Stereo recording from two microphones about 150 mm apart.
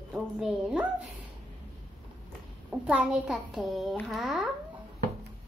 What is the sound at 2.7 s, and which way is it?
A child's voice, 10° right (ahead or behind).